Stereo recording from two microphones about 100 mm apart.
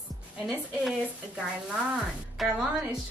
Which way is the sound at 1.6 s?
10° right (ahead or behind).